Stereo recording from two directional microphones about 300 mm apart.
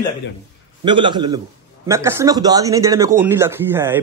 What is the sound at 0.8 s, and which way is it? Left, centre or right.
A man's voice, centre.